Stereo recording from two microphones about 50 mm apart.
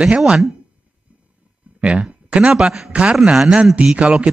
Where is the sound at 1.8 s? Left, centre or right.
Right.